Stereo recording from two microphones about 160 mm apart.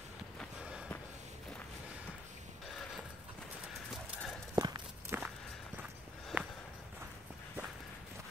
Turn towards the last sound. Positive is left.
turn(degrees=-5)  # may be behind; listen again after turning